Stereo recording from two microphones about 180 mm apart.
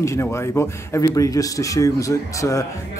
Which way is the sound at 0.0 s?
15° left (ahead or behind).